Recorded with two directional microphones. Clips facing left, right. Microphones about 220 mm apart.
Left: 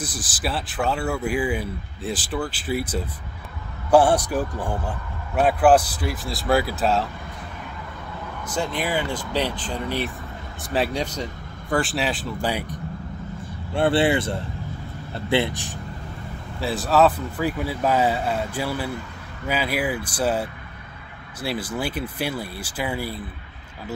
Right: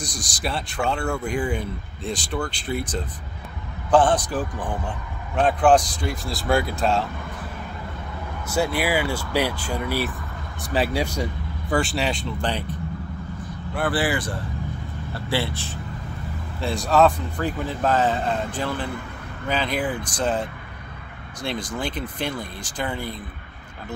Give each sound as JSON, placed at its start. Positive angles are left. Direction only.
{"t": 0.0, "sound": "a man's voice", "side_deg": 5}
{"t": 8.5, "sound": "speech", "side_deg": -10}
{"t": 13.7, "sound": "speech", "side_deg": 25}
{"t": 16.5, "sound": "a man's voice", "side_deg": 5}